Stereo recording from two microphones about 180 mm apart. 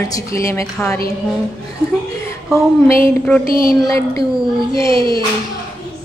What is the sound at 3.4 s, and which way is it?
Speech, 55° left (ahead or behind).